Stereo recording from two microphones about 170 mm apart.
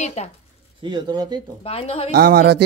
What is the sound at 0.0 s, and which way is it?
Speech, 40° left (ahead or behind).